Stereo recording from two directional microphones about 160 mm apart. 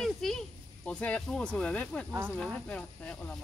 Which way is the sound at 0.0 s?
5° left (ahead or behind).